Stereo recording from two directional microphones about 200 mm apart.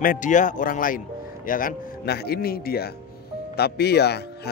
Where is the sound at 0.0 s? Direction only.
40° left (ahead or behind).